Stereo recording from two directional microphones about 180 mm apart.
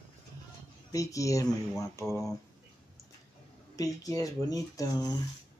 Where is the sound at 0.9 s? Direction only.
20° left (ahead or behind).